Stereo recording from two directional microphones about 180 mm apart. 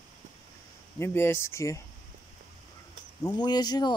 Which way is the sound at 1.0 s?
15° left (ahead or behind).